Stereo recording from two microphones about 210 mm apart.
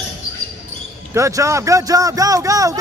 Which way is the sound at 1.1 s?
15° right (ahead or behind).